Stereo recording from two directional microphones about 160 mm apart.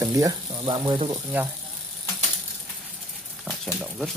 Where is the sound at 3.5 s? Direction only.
5° right (ahead or behind).